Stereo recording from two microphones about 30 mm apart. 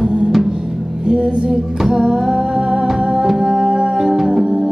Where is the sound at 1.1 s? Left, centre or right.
Right.